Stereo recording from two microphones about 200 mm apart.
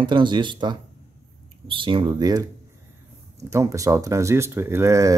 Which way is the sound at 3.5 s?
15° right (ahead or behind).